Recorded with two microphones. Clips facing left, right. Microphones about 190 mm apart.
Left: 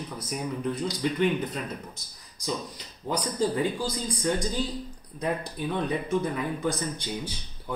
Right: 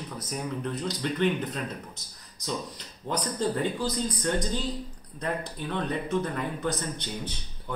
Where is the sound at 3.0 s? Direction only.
5° left (ahead or behind).